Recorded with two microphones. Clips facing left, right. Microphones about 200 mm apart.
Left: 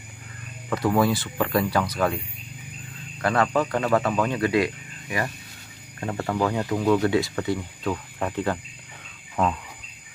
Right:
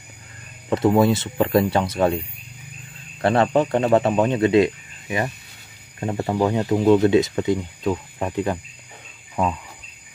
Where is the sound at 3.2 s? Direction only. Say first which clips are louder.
Right 5 dB; 30° right (ahead or behind).